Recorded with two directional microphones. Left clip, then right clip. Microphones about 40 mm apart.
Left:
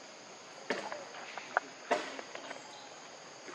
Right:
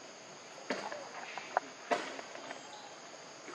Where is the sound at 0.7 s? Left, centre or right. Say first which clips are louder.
Left 2 dB; left.